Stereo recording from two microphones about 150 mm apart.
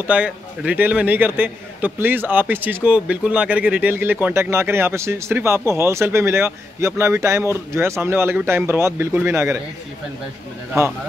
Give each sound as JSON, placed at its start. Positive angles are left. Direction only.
{"t": 0.0, "sound": "a man's voice", "side_deg": -10}
{"t": 10.8, "sound": "a man's voice", "side_deg": -20}